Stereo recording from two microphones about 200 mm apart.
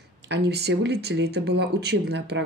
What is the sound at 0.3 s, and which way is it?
Speech, 55° right (ahead or behind).